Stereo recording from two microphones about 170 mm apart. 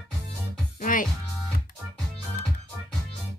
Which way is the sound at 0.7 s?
50° left (ahead or behind).